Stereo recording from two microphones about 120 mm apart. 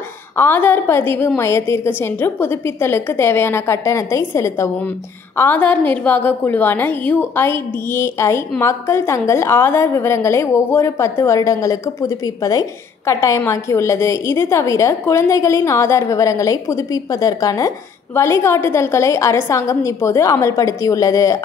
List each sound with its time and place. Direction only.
0.4 s a woman's voice: 15° left (ahead or behind)